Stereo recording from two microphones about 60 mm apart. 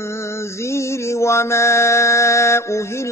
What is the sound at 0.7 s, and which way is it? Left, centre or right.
Mantra, left.